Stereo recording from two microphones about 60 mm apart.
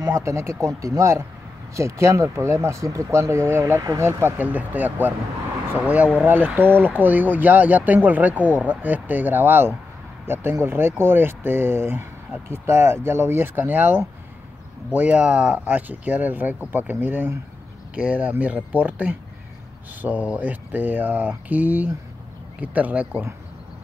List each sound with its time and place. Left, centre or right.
0.0 s speech: right
1.8 s speech: right
4.4 s speech: right
6.1 s speech: right
15.0 s speech: right
17.9 s speech: right